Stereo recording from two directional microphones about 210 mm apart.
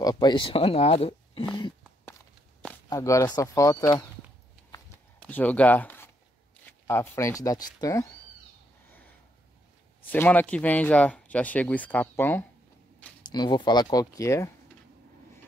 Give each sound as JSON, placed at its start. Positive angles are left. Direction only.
{"t": 0.0, "sound": "speech", "side_deg": 20}
{"t": 2.6, "sound": "speech", "side_deg": 10}
{"t": 5.2, "sound": "speech", "side_deg": 10}
{"t": 10.0, "sound": "speech", "side_deg": 10}
{"t": 13.2, "sound": "speech", "side_deg": 20}